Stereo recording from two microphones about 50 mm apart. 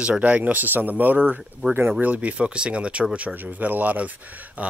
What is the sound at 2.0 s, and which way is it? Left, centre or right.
Speech, right.